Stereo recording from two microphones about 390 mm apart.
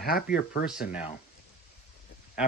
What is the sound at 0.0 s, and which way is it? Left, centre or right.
Speech, left.